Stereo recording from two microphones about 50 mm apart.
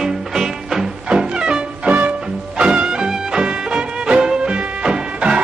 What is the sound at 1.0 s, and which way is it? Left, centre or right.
Music, centre.